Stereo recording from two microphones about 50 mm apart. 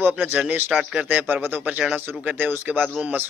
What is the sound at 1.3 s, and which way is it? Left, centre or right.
A man's voice, right.